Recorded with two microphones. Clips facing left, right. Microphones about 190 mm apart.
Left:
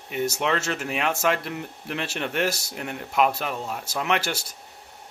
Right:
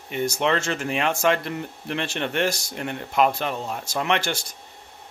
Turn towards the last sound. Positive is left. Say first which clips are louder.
# right 1 dB
turn(degrees=5)  # may be behind; listen again after turning